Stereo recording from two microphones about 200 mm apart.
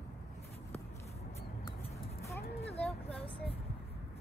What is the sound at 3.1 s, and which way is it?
Vehicle, 5° left (ahead or behind).